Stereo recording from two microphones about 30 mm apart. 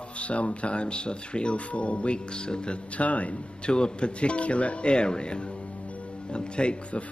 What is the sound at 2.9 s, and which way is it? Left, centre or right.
Speech, left.